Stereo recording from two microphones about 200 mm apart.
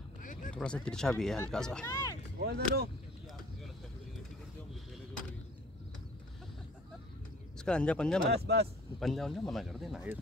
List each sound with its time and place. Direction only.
0.2 s a sound: 40° left (ahead or behind)
0.5 s speech: 5° left (ahead or behind)
1.9 s speech: 15° left (ahead or behind)
2.4 s speech: 50° right (ahead or behind)
7.5 s speech: 5° left (ahead or behind)
8.3 s speech: 55° right (ahead or behind)
9.0 s speech: centre (ahead or behind)